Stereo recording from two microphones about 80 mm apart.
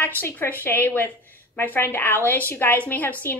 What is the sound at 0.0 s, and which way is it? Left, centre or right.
A woman's voice, left.